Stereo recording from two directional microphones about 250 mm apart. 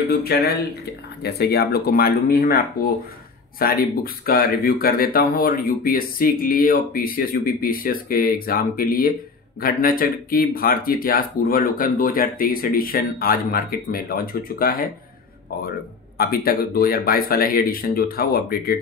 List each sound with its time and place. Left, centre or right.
0.1 s speech: left
16.2 s speech: left